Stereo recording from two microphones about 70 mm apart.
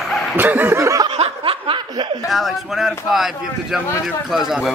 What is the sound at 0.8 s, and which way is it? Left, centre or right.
Snicker, right.